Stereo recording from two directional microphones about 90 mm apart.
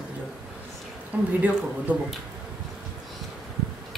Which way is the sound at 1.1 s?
20° right (ahead or behind).